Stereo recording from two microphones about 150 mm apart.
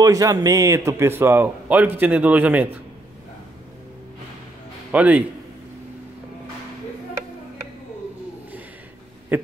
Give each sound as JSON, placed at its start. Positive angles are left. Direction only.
{"t": 0.0, "sound": "speech", "side_deg": -25}
{"t": 4.9, "sound": "speech", "side_deg": -10}
{"t": 9.3, "sound": "speech", "side_deg": -10}